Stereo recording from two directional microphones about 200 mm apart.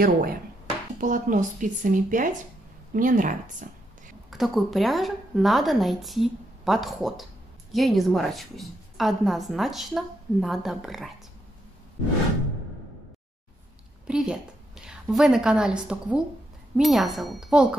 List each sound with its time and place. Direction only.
0.0 s speech: 45° right (ahead or behind)
4.3 s a woman's voice: centre (ahead or behind)
14.0 s a woman's voice: 5° right (ahead or behind)